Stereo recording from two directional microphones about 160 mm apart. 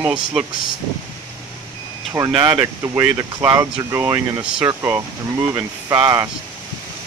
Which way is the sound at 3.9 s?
15° right (ahead or behind).